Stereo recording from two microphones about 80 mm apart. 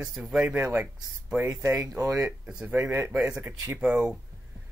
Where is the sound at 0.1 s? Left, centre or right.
Centre.